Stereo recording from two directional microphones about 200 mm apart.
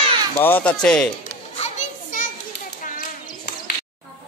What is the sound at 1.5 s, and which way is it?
Children playing, 35° left (ahead or behind).